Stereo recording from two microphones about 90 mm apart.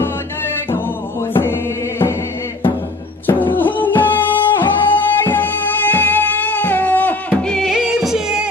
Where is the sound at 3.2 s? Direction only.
20° left (ahead or behind).